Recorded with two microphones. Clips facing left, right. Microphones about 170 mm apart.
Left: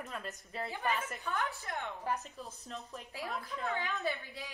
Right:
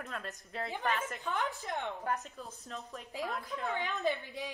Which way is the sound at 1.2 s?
20° right (ahead or behind).